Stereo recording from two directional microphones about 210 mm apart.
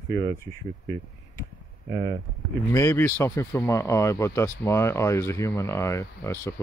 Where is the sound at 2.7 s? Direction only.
15° left (ahead or behind).